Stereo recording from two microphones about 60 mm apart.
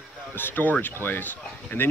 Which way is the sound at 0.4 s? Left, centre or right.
Left.